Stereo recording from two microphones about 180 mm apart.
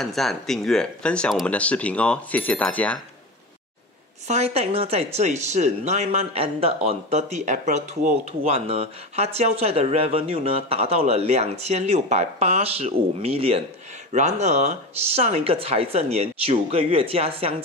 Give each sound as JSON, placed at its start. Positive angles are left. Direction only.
{"t": 0.0, "sound": "speech", "side_deg": 0}
{"t": 4.3, "sound": "speech", "side_deg": -35}